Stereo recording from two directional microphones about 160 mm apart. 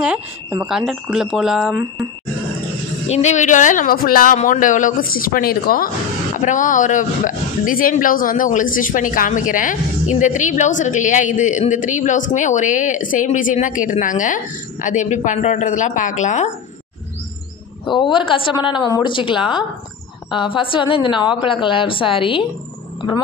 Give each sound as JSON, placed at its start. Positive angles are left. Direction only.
{"t": 0.7, "sound": "speech", "side_deg": -5}
{"t": 3.1, "sound": "speech", "side_deg": 45}
{"t": 6.3, "sound": "speech", "side_deg": 50}
{"t": 17.8, "sound": "a woman's voice", "side_deg": 30}